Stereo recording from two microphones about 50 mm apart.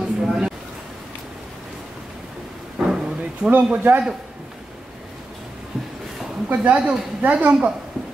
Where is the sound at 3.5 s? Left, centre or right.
Right.